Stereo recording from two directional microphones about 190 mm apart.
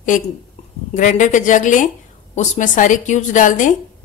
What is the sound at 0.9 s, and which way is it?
A woman's voice, 40° left (ahead or behind).